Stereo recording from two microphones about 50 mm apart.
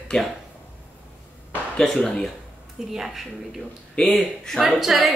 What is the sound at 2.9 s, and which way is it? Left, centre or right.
Speech, centre.